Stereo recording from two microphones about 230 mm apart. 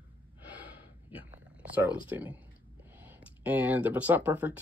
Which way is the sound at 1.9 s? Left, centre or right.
Centre.